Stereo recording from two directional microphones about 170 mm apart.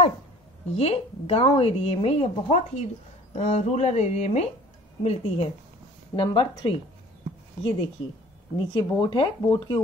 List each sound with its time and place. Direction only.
0.7 s a woman's voice: 35° left (ahead or behind)
8.5 s a woman's voice: 30° left (ahead or behind)